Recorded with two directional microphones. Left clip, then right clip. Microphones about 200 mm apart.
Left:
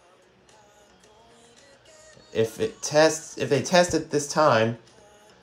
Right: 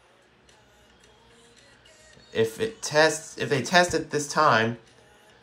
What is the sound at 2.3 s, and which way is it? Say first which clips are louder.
Speech: even; 15° left (ahead or behind).